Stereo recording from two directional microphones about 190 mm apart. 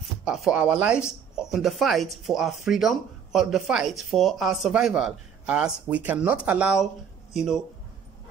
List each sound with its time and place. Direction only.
0.2 s speech: 5° right (ahead or behind)